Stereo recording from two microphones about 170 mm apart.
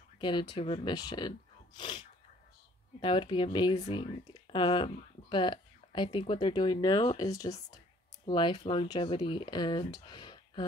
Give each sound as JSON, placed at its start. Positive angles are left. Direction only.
{"t": 0.2, "sound": "speech", "side_deg": 25}